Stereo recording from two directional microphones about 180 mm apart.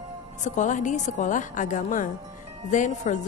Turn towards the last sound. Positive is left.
turn(degrees=45)  # may be behind; listen again after turning